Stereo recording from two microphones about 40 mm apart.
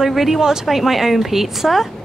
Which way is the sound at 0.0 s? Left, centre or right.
Centre.